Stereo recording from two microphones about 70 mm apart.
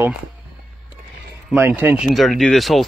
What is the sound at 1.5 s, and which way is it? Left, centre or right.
Speech, right.